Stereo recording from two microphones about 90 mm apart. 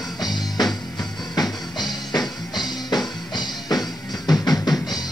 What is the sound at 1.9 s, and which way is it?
Music, 50° left (ahead or behind).